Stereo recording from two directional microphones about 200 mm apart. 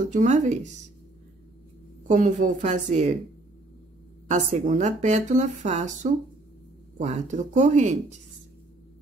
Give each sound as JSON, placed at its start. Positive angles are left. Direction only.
{"t": 0.0, "sound": "speech", "side_deg": -40}
{"t": 2.0, "sound": "speech", "side_deg": -40}
{"t": 4.3, "sound": "speech", "side_deg": -35}